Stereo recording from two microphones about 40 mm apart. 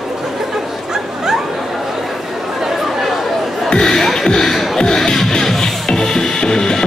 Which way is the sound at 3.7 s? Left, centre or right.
Centre.